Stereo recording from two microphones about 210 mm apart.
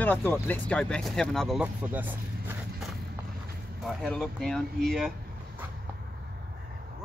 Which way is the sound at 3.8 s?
5° left (ahead or behind).